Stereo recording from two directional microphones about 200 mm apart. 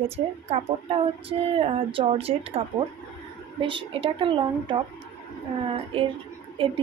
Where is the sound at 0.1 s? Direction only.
30° right (ahead or behind).